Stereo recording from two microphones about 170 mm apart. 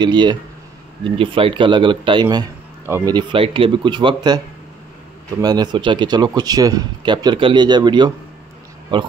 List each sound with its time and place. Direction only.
0.0 s speech: 25° right (ahead or behind)
5.4 s speech: 25° right (ahead or behind)